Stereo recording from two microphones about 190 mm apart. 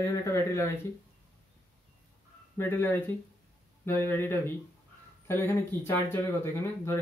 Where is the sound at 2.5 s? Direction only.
10° left (ahead or behind).